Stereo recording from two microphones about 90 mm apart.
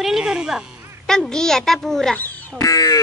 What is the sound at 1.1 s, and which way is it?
A woman's voice, 5° left (ahead or behind).